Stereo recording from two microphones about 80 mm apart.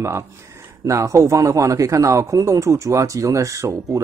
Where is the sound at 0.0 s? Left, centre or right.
Right.